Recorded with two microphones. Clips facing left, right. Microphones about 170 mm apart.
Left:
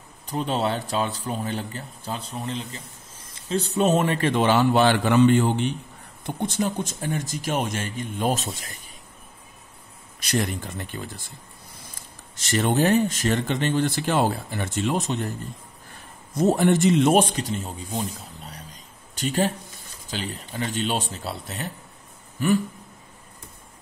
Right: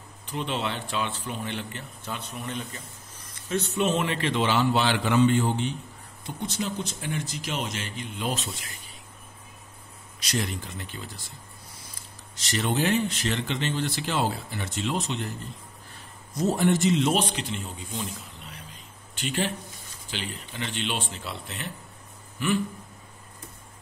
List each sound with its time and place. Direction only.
0.3 s a man's voice: 40° left (ahead or behind)
10.2 s speech: 55° left (ahead or behind)
12.4 s speech: 50° left (ahead or behind)
16.3 s a man's voice: 55° left (ahead or behind); by 21.6 s 35° left (ahead or behind)